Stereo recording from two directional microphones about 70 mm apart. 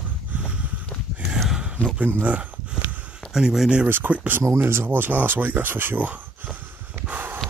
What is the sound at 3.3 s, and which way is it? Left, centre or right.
Speech, centre.